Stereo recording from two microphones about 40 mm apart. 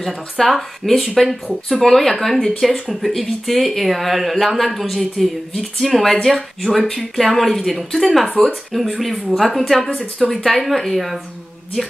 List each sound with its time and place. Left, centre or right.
0.0 s speech: centre